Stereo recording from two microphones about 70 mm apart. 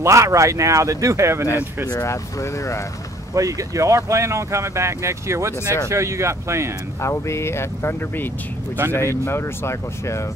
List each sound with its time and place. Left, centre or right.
0.0 s speech: right
2.0 s speech: left
3.3 s speech: right
7.0 s speech: left